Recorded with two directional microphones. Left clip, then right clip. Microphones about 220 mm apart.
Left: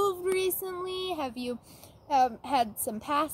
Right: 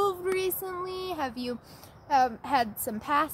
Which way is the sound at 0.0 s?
20° left (ahead or behind).